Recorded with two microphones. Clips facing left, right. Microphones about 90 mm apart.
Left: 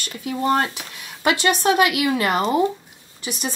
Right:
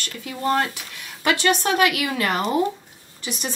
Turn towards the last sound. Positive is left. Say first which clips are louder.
# left 2 dB
turn(degrees=15)  # may be behind; listen again after turning